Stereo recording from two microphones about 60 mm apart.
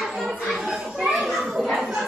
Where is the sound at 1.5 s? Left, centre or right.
Centre.